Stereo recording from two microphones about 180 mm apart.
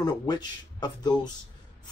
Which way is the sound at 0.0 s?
25° left (ahead or behind).